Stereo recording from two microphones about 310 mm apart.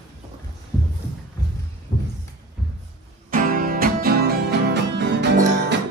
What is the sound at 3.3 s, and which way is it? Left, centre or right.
Music, right.